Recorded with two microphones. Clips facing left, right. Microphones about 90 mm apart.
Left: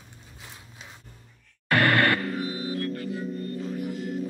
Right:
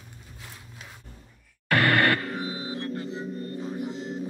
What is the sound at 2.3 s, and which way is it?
Music, 25° right (ahead or behind).